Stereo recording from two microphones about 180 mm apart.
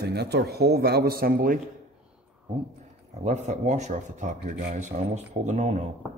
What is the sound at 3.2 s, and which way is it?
A man's voice, 40° right (ahead or behind).